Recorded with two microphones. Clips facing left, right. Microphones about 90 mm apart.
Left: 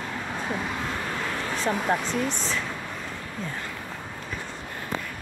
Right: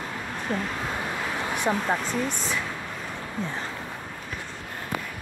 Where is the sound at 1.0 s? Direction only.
10° right (ahead or behind).